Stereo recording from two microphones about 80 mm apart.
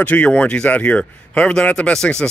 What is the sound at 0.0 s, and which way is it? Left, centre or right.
Speech, centre.